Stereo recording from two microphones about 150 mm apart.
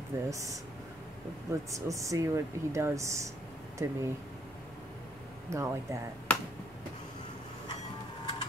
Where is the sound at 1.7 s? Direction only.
20° right (ahead or behind).